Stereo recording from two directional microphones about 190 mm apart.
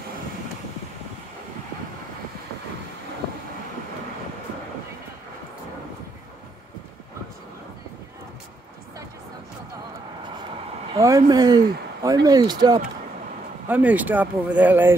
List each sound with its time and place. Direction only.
11.0 s speech: 15° right (ahead or behind)
13.7 s speech: 10° right (ahead or behind)